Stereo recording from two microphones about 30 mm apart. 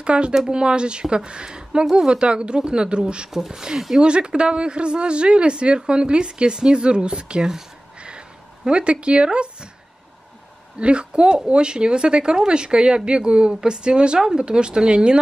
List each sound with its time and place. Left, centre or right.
0.0 s speech: right
3.3 s speech: centre
4.0 s speech: right
8.6 s speech: right
10.8 s speech: right